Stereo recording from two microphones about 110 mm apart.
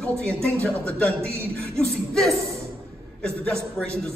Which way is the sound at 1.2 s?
25° right (ahead or behind).